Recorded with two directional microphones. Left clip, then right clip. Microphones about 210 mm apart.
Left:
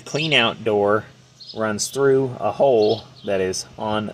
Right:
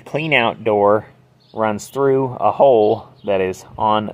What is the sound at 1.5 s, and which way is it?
Speech, 10° left (ahead or behind).